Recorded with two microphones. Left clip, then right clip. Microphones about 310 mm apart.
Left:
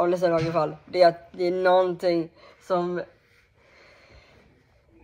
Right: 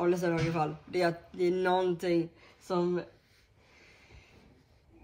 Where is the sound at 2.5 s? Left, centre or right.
Centre.